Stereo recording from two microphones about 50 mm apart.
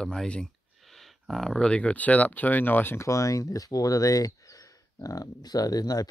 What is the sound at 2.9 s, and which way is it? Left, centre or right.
Speech, left.